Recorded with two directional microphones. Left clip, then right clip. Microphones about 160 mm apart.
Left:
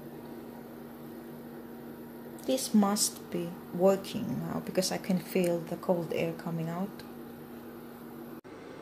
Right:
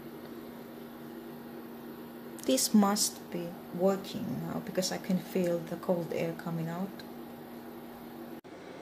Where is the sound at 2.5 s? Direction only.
30° right (ahead or behind).